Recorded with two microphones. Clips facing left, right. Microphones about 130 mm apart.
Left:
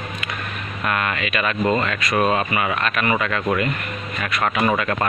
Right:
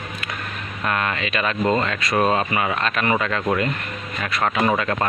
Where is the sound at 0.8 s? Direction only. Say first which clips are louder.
Even; 25° right (ahead or behind).